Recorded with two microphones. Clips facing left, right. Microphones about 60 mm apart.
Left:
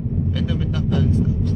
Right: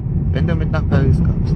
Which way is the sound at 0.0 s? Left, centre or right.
Right.